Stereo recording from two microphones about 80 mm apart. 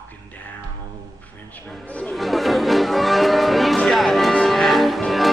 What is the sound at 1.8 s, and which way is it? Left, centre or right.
Speech, centre.